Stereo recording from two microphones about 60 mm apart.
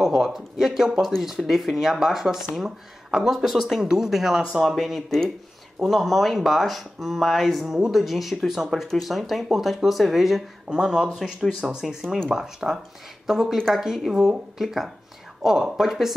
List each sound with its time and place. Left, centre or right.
0.0 s speech: centre